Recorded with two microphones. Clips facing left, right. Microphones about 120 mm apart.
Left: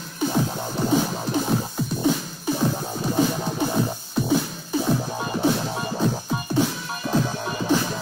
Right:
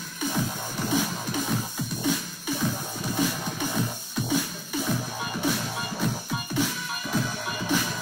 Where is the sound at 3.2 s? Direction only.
30° left (ahead or behind).